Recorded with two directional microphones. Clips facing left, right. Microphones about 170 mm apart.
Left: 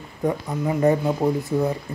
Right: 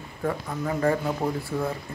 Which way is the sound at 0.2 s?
20° left (ahead or behind).